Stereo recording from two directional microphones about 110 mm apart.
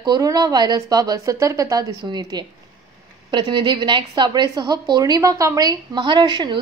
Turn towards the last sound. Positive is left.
turn(degrees=-45)  # may be behind; listen again after turning